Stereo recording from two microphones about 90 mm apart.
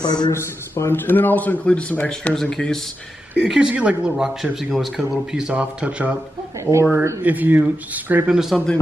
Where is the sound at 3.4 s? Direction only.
5° right (ahead or behind).